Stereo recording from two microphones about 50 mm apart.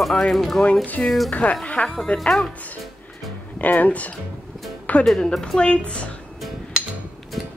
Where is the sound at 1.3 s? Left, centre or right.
Left.